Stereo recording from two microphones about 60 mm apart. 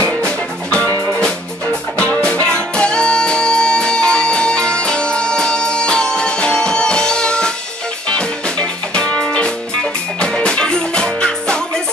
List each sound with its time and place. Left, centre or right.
0.2 s music: centre
2.0 s music: left